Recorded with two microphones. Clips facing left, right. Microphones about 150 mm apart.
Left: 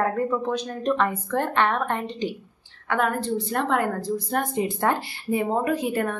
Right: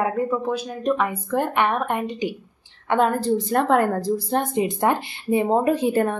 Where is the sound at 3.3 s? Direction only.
45° right (ahead or behind).